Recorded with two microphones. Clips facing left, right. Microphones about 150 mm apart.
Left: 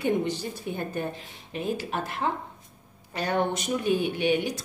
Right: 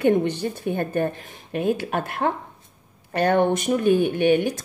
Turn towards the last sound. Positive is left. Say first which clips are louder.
# right 6 dB
turn(degrees=-55)  # may be behind; listen again after turning